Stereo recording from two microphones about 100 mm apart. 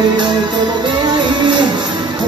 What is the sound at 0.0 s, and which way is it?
Music, 45° right (ahead or behind).